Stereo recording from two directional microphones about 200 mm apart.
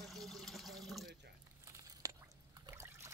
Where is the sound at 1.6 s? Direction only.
15° right (ahead or behind).